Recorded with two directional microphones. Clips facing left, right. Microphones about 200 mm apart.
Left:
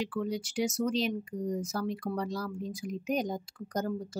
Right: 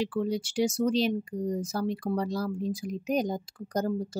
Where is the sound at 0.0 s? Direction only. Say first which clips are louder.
Right 4 dB; 30° right (ahead or behind).